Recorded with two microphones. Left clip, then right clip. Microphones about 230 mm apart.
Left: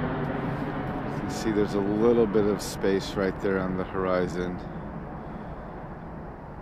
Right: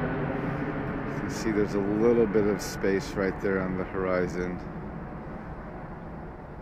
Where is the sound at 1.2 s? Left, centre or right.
Centre.